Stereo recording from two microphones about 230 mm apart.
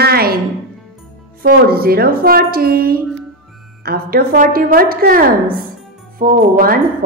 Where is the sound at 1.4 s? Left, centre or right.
Right.